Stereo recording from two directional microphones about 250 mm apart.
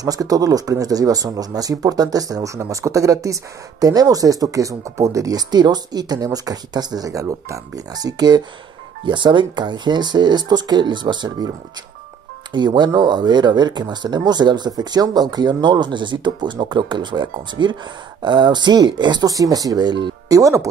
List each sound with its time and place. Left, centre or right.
0.0 s speech: centre
12.5 s speech: centre